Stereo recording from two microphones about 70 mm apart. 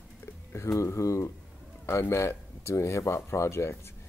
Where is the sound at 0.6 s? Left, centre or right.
Left.